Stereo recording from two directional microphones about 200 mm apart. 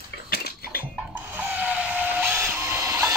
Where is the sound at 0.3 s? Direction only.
50° left (ahead or behind).